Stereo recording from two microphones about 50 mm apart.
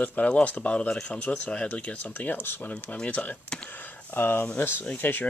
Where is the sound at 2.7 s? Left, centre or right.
Left.